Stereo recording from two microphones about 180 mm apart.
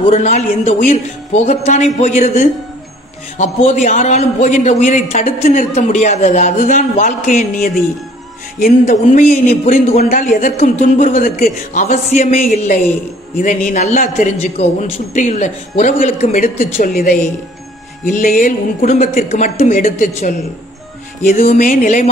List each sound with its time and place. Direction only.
0.1 s a woman's voice: 40° left (ahead or behind)